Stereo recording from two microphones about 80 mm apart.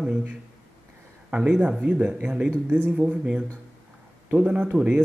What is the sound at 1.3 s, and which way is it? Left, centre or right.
Speech, centre.